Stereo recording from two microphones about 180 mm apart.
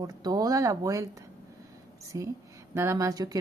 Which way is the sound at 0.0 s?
20° right (ahead or behind).